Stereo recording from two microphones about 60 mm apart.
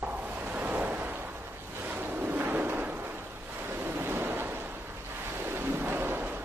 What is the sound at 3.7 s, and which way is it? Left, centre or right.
Waves, right.